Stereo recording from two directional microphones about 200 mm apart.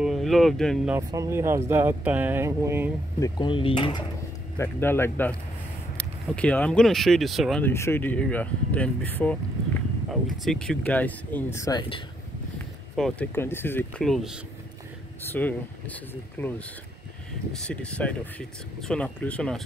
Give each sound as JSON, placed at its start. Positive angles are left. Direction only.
{"t": 0.0, "sound": "speech", "side_deg": 0}
{"t": 0.9, "sound": "speech", "side_deg": -15}
{"t": 3.2, "sound": "speech", "side_deg": 25}
{"t": 4.6, "sound": "speech", "side_deg": 10}
{"t": 7.6, "sound": "speech", "side_deg": 10}
{"t": 10.4, "sound": "speech", "side_deg": 5}
{"t": 12.5, "sound": "speech", "side_deg": 5}
{"t": 17.6, "sound": "speech", "side_deg": 5}